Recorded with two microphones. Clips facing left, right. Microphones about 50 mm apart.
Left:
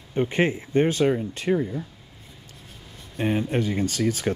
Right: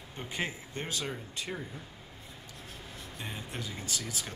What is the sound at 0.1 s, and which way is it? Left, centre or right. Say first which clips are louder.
Speech: left 14 dB; left.